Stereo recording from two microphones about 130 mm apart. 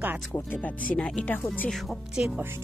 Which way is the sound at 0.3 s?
15° left (ahead or behind).